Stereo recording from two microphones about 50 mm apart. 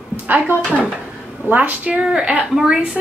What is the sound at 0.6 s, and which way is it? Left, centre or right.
Speech, right.